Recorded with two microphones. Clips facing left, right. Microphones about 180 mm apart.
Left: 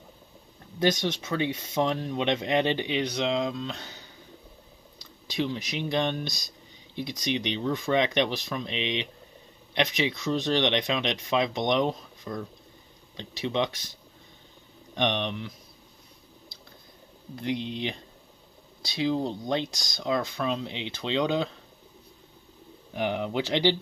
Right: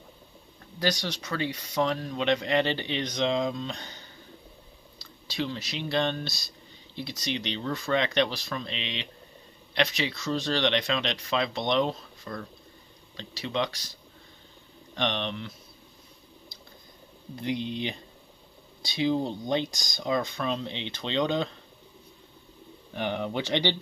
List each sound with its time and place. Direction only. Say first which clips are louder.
0.7 s speech: left 4 dB; 20° left (ahead or behind); by 4.1 s 5° left (ahead or behind)
4.9 s speech: left 3 dB; 15° left (ahead or behind)
15.0 s speech: left 2 dB; 15° left (ahead or behind)
17.4 s speech: even; centre (ahead or behind)
22.9 s speech: left 2 dB; 10° left (ahead or behind)